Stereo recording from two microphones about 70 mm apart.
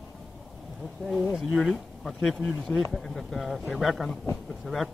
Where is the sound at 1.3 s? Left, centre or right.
Centre.